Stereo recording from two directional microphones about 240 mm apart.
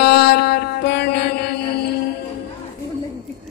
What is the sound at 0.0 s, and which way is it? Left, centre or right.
Mantra, left.